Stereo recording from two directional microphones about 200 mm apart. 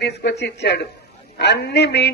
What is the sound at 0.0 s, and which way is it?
A man's voice, 60° left (ahead or behind).